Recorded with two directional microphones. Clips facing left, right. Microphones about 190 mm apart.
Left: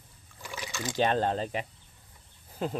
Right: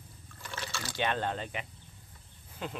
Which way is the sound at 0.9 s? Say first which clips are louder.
Left 6 dB; 35° left (ahead or behind).